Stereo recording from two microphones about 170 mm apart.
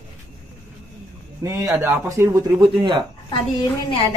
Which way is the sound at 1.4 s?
20° right (ahead or behind).